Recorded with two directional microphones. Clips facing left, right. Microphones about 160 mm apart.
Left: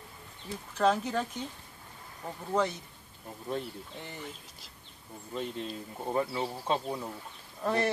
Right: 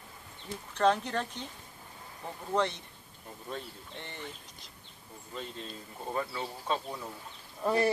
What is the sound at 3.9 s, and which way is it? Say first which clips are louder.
Speech: right 2 dB; 5° left (ahead or behind).